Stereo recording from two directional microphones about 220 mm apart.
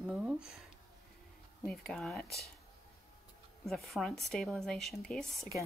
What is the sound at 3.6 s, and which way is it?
Speech, centre (ahead or behind).